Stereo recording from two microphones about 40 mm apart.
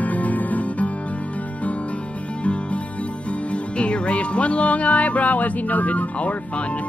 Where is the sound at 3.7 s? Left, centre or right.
Left.